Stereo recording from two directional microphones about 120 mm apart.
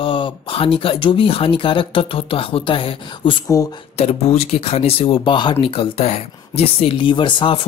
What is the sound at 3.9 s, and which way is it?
Speech, 60° left (ahead or behind).